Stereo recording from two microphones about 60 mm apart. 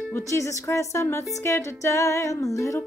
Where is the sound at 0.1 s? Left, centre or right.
Left.